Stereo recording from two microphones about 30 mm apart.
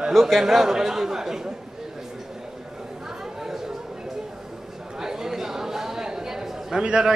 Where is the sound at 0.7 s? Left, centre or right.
Centre.